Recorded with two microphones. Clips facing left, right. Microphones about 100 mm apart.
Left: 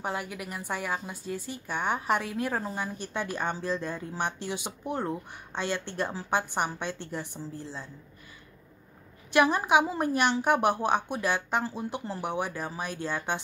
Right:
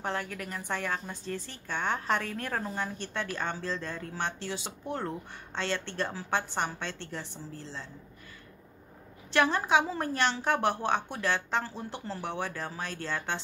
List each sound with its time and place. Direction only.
0.0 s a woman's voice: 10° left (ahead or behind)
9.3 s a woman's voice: 15° left (ahead or behind)